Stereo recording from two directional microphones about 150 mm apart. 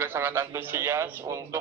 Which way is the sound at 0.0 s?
15° right (ahead or behind).